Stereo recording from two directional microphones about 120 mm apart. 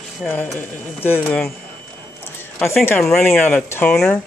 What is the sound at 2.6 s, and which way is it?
Speech, 20° left (ahead or behind).